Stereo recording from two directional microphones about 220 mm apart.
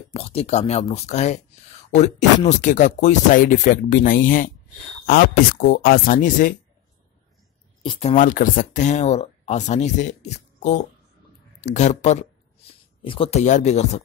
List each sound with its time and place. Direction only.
0.1 s speech: 25° left (ahead or behind)
7.8 s speech: 25° left (ahead or behind)